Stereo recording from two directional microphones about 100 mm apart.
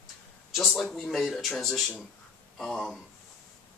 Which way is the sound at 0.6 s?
Centre (ahead or behind).